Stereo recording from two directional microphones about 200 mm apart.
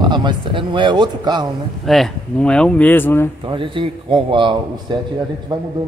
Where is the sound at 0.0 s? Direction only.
20° right (ahead or behind).